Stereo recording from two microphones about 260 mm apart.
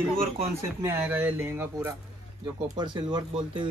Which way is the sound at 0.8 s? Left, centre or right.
Centre.